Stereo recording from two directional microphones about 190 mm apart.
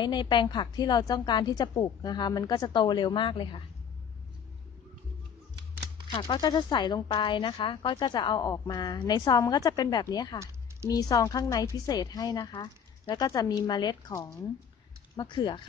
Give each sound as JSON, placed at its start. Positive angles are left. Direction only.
{"t": 0.0, "sound": "speech", "side_deg": 25}
{"t": 6.1, "sound": "speech", "side_deg": 25}